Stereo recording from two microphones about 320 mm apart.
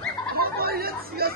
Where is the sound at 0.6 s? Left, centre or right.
Right.